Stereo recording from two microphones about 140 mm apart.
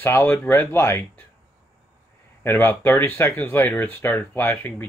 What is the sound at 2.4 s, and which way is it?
Speech, 15° left (ahead or behind).